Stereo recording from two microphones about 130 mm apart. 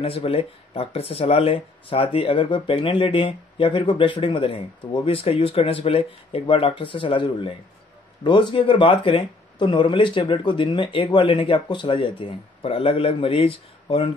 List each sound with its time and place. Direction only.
0.0 s speech: 50° left (ahead or behind)